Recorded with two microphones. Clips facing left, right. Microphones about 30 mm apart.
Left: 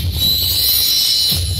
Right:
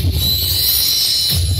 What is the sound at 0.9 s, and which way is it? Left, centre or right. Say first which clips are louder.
Music: left 1 dB; left.